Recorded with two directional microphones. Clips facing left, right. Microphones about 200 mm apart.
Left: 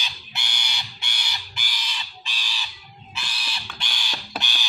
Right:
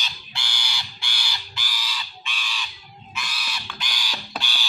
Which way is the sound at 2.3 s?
35° left (ahead or behind).